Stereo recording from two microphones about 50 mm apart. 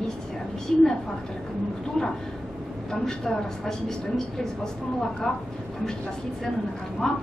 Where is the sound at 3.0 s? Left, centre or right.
Centre.